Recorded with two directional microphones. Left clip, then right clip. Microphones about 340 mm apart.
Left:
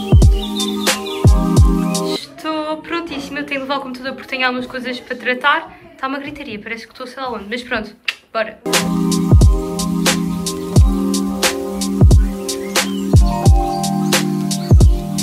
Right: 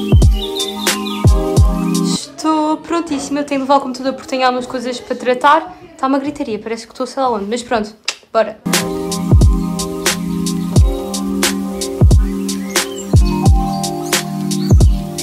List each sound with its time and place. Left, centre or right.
0.1 s music: centre
2.0 s a woman's voice: centre
8.7 s music: centre